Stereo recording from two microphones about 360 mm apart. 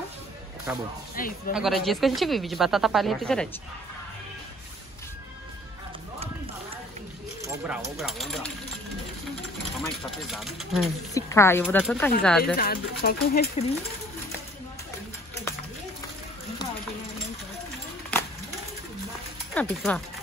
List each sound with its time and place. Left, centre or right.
0.7 s speech: centre
1.2 s speech: left
1.5 s speech: centre
7.4 s a sound: centre
8.0 s speech: centre
9.8 s speech: centre
12.5 s speech: left
19.5 s speech: centre